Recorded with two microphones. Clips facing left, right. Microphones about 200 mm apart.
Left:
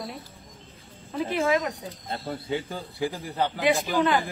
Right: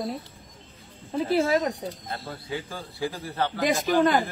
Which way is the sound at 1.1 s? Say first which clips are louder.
Right 2 dB; 35° right (ahead or behind).